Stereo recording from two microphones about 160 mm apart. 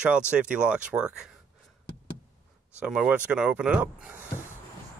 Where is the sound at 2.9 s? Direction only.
5° right (ahead or behind).